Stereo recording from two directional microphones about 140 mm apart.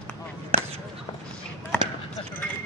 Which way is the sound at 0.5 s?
45° right (ahead or behind).